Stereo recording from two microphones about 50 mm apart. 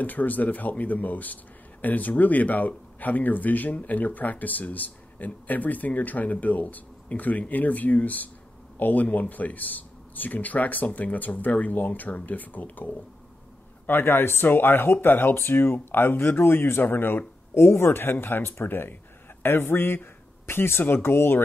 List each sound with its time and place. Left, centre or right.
0.0 s speech: left
13.8 s speech: left